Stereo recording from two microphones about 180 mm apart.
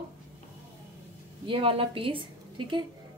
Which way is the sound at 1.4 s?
30° right (ahead or behind).